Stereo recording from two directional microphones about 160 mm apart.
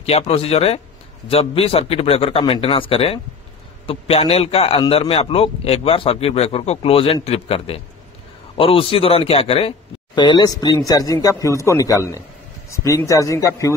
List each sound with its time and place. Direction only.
0.0 s a man's voice: 40° left (ahead or behind); by 13.7 s 20° left (ahead or behind)